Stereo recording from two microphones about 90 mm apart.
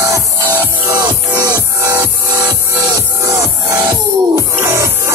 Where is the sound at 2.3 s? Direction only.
50° right (ahead or behind).